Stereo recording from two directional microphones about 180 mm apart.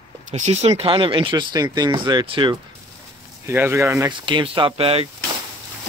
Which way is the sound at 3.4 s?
10° right (ahead or behind).